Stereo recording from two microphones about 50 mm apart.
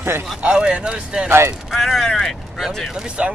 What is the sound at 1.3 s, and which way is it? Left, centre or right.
Speech, right.